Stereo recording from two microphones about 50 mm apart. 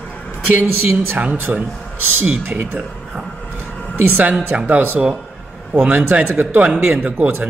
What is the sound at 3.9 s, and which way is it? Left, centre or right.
Speech, right.